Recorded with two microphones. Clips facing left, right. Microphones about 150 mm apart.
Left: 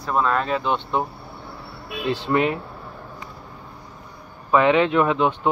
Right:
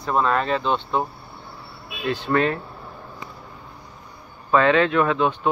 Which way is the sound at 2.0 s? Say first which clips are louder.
Left 1 dB; 30° left (ahead or behind).